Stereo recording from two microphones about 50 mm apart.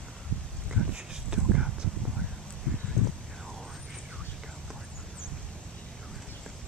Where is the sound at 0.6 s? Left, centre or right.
Centre.